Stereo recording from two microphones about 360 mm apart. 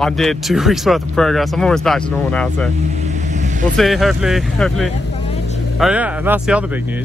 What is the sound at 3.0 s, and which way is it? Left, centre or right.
Vehicle, centre.